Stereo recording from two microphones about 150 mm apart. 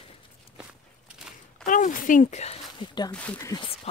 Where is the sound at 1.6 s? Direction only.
60° left (ahead or behind); by 2.9 s 45° left (ahead or behind).